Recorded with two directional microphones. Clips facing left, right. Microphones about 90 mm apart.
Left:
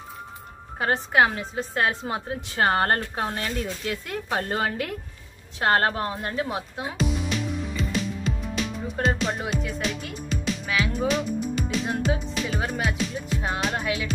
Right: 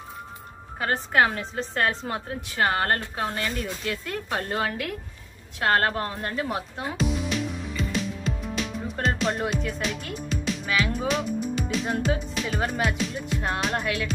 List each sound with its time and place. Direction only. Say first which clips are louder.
1.1 s a woman's voice: even; 15° left (ahead or behind); by 3.5 s 30° left (ahead or behind)
3.8 s a woman's voice: even; 20° left (ahead or behind)
6.5 s music: right 1 dB; 5° left (ahead or behind)
8.9 s speech: even; centre (ahead or behind)